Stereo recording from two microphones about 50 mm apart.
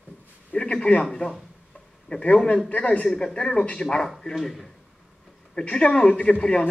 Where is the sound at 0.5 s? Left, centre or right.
Left.